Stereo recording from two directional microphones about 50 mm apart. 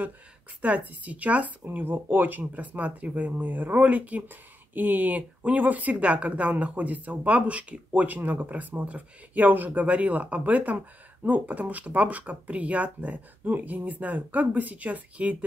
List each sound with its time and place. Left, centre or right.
0.6 s speech: right
8.1 s speech: right